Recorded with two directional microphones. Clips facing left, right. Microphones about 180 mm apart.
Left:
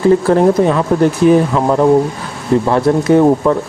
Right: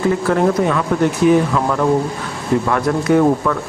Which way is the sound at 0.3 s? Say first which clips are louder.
Left 5 dB; 30° left (ahead or behind).